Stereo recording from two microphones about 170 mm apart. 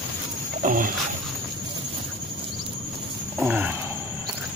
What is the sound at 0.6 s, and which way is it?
Speech, 50° right (ahead or behind).